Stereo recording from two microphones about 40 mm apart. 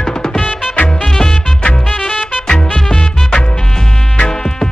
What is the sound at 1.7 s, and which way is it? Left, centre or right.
Music, centre.